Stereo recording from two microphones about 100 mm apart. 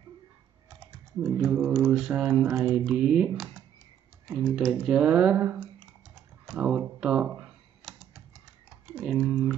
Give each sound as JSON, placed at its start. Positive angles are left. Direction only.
{"t": 1.5, "sound": "speech", "side_deg": -15}
{"t": 2.3, "sound": "speech", "side_deg": -20}
{"t": 2.7, "sound": "speech", "side_deg": -10}
{"t": 4.3, "sound": "speech", "side_deg": 0}
{"t": 6.1, "sound": "typing", "side_deg": 0}
{"t": 6.6, "sound": "speech", "side_deg": -10}
{"t": 7.8, "sound": "typewriter", "side_deg": 0}
{"t": 8.8, "sound": "typing", "side_deg": -10}